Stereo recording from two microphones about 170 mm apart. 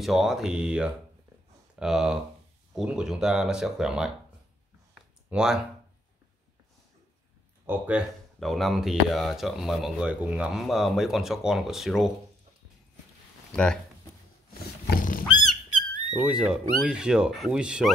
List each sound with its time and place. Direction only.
0.0 s speech: centre (ahead or behind)
5.3 s speech: 5° right (ahead or behind)
7.6 s speech: 10° right (ahead or behind)
8.4 s speech: centre (ahead or behind)
13.5 s speech: 5° left (ahead or behind)
14.9 s a sound: 55° left (ahead or behind)
16.1 s speech: 5° right (ahead or behind)